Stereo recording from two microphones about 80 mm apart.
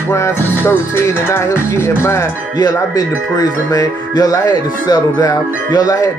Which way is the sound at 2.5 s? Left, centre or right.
Left.